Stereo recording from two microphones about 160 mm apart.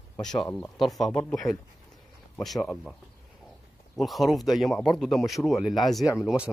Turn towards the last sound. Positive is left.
turn(degrees=0)  # may be behind; listen again after turning